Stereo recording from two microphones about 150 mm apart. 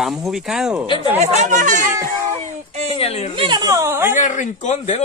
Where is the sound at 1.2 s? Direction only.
50° right (ahead or behind).